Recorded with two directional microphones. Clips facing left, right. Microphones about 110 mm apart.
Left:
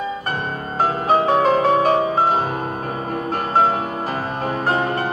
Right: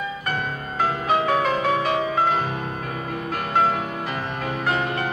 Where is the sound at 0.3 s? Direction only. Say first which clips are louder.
Left 2 dB; 35° left (ahead or behind).